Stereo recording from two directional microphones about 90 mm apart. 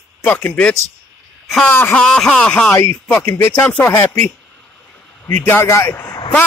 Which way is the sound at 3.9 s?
20° left (ahead or behind).